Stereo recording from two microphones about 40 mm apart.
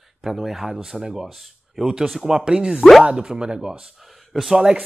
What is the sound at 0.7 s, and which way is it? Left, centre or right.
Speech, centre.